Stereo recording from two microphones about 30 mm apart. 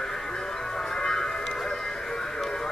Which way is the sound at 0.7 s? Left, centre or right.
Centre.